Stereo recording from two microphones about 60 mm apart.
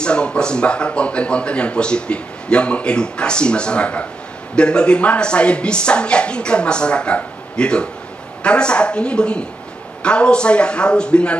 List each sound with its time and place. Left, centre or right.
0.0 s speech: centre